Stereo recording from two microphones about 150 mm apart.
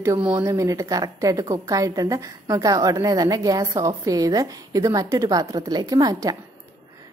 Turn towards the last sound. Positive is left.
turn(degrees=-25)  # may be behind; listen again after turning